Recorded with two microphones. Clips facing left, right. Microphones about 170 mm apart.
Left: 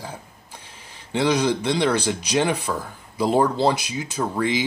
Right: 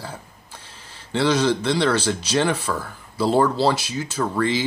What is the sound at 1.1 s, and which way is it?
Speech, 15° left (ahead or behind).